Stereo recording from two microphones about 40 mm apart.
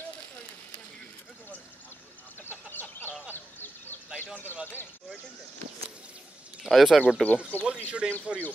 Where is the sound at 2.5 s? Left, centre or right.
Left.